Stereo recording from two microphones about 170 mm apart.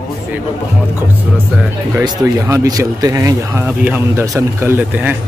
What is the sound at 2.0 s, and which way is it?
Speech, 20° right (ahead or behind).